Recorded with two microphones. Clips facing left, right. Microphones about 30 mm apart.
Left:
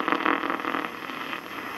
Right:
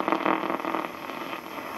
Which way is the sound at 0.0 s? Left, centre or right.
Centre.